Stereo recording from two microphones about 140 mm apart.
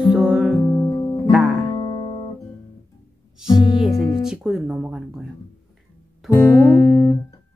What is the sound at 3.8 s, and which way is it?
Speech, centre (ahead or behind).